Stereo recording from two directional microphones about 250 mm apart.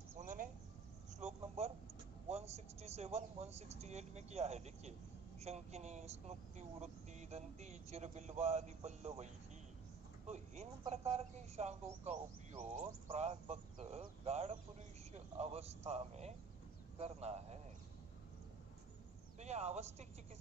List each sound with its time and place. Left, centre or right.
0.2 s a sound: right
2.2 s speech: right
19.4 s speech: right